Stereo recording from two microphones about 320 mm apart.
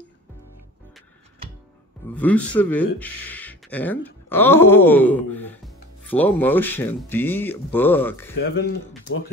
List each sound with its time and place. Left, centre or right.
2.0 s speech: centre
8.4 s speech: left